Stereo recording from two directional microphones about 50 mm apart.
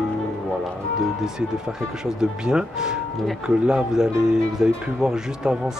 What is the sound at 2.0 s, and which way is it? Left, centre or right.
Speech, centre.